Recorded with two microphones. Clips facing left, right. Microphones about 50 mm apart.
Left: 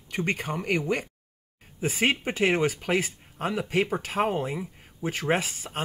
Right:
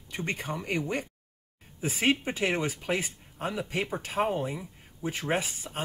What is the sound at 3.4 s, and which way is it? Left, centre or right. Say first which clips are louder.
Speech: left 5 dB; left.